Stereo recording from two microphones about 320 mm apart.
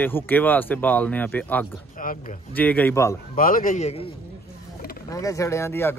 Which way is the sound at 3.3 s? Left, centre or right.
Left.